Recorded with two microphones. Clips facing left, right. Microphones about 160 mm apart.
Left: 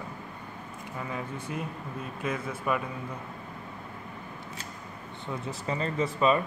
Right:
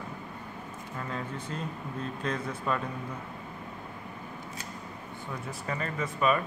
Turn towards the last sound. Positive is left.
turn(degrees=25)  # may be behind; listen again after turning